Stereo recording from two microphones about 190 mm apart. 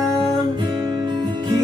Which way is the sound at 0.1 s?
25° right (ahead or behind).